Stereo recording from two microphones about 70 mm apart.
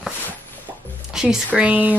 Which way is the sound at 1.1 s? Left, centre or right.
Centre.